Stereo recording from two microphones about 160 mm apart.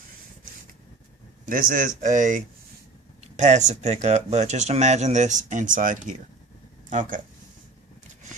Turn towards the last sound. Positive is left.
turn(degrees=-55)  # may be behind; listen again after turning